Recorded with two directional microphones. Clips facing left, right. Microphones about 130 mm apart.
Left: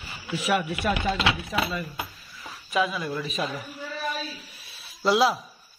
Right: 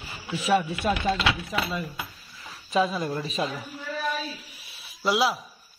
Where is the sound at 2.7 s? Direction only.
35° right (ahead or behind).